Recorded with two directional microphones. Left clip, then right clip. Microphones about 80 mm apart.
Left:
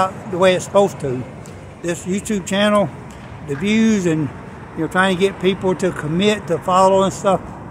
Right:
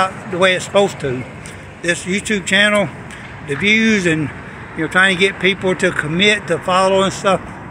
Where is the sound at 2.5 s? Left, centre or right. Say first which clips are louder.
Right 2 dB; left.